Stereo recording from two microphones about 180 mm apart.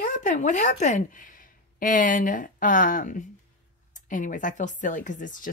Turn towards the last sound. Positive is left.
turn(degrees=45)  # may be behind; listen again after turning